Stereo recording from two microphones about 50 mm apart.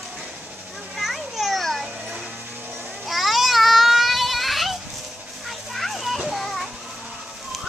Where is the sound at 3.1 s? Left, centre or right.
Centre.